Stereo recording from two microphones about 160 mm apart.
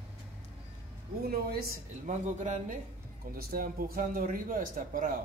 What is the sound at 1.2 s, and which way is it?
Speech, 75° right (ahead or behind).